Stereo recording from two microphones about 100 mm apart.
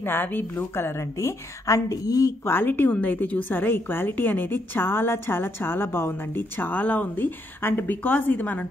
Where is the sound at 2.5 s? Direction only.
20° left (ahead or behind).